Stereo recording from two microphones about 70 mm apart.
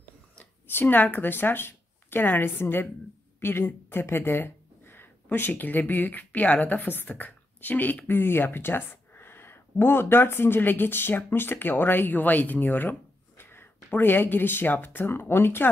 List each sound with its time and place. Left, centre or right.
0.7 s speech: left